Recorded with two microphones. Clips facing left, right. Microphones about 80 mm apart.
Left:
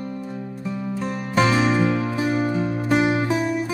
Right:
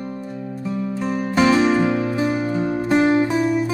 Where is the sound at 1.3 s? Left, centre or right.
Centre.